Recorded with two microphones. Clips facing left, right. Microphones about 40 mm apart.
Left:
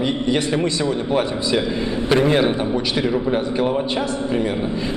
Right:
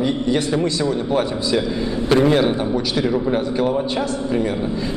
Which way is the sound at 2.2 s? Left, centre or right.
Left.